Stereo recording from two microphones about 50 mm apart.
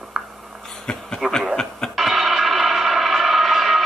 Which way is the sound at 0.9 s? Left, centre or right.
Centre.